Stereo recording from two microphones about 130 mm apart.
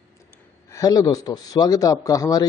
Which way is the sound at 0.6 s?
25° left (ahead or behind).